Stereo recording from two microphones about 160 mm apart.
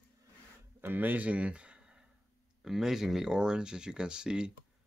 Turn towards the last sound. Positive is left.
turn(degrees=-5)  # may be behind; listen again after turning